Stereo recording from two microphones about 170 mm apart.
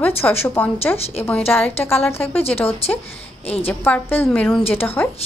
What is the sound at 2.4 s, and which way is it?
Speech, 35° left (ahead or behind).